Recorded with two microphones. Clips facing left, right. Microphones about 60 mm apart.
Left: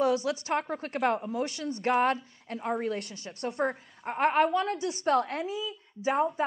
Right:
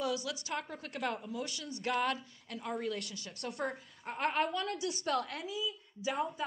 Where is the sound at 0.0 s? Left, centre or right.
Left.